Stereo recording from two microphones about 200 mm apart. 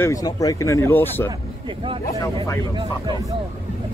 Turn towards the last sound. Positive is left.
turn(degrees=-25)  # may be behind; listen again after turning